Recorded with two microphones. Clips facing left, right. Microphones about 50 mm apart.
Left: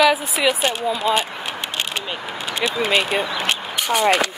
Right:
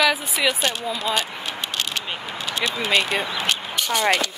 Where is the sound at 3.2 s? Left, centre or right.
Left.